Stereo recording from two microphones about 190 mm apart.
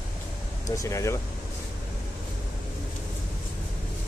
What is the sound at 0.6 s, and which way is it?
Speech, 15° left (ahead or behind).